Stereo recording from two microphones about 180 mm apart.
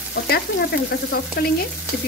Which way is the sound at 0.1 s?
60° left (ahead or behind).